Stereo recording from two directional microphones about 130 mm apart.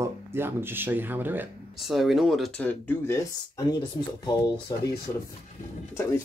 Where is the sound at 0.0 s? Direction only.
20° right (ahead or behind).